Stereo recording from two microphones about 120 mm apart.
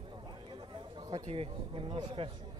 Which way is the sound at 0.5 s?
40° right (ahead or behind).